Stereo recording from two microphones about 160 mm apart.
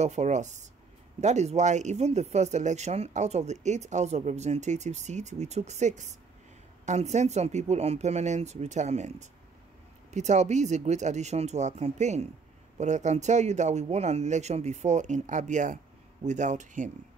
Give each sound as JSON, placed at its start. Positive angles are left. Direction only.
{"t": 0.0, "sound": "speech", "side_deg": -45}